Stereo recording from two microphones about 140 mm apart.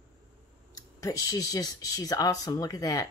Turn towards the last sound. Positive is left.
turn(degrees=25)  # may be behind; listen again after turning